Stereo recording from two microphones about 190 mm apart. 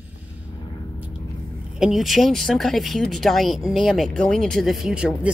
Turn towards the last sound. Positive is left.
turn(degrees=-5)  # may be behind; listen again after turning